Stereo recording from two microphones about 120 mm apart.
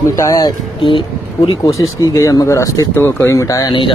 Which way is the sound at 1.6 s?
25° left (ahead or behind).